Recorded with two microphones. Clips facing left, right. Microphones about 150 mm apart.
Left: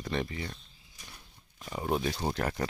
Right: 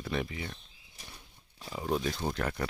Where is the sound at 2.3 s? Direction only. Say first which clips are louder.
Left 1 dB; 30° left (ahead or behind).